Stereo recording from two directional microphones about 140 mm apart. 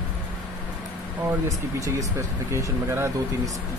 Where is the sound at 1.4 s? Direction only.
20° right (ahead or behind).